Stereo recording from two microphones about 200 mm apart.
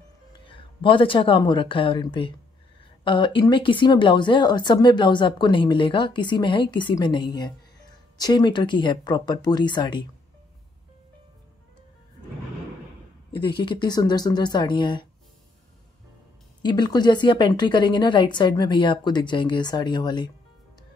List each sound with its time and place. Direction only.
0.5 s a woman's voice: 25° left (ahead or behind)
13.3 s a woman's voice: 25° left (ahead or behind)
16.6 s a woman's voice: 20° left (ahead or behind)